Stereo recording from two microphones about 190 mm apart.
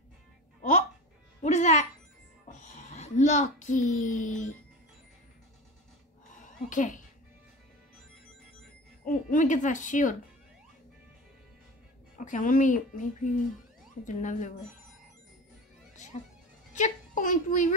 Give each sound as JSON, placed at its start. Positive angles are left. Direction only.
{"t": 1.4, "sound": "music", "side_deg": 35}
{"t": 2.4, "sound": "a sound", "side_deg": 40}
{"t": 6.7, "sound": "speech", "side_deg": 45}
{"t": 9.0, "sound": "speech", "side_deg": 45}
{"t": 12.2, "sound": "speech", "side_deg": 45}
{"t": 16.7, "sound": "a woman's voice", "side_deg": 40}